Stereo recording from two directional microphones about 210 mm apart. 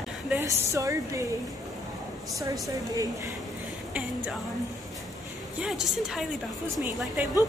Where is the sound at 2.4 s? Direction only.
15° right (ahead or behind).